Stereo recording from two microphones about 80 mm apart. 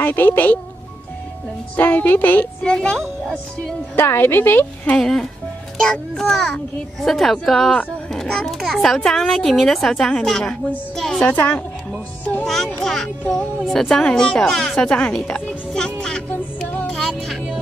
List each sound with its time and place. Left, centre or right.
0.0 s a woman's voice: left
1.8 s a woman's voice: left
2.7 s a woman's voice: centre
3.9 s a woman's voice: left
4.9 s a woman's voice: centre
11.2 s a woman's voice: left
12.8 s a child's voice: centre
16.6 s music: left